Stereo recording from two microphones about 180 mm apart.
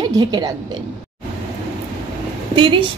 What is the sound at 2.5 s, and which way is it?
Speech, 30° right (ahead or behind).